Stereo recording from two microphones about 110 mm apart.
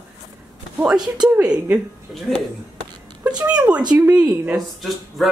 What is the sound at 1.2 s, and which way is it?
Speech, 10° right (ahead or behind).